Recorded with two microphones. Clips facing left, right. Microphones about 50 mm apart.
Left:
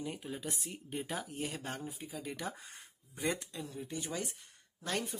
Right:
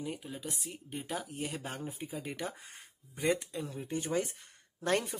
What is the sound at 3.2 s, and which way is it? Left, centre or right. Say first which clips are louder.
Speech: right 5 dB; right.